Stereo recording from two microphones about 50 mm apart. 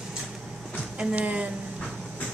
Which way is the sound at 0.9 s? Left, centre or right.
Right.